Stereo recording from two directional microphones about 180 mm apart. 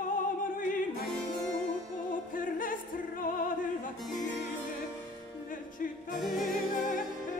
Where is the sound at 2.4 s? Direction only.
50° left (ahead or behind).